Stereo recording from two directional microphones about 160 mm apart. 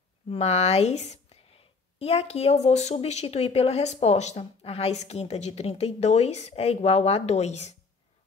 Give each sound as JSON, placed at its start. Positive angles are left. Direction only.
{"t": 0.3, "sound": "speech", "side_deg": 40}